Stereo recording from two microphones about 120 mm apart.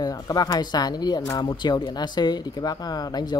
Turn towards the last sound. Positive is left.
turn(degrees=35)  # may be behind; listen again after turning